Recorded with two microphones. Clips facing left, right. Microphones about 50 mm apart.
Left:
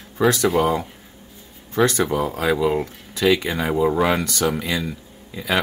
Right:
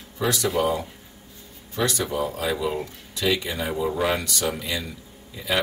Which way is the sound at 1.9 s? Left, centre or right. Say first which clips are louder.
Left 5 dB; left.